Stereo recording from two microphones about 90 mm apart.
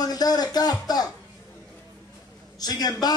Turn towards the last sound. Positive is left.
turn(degrees=45)  # may be behind; listen again after turning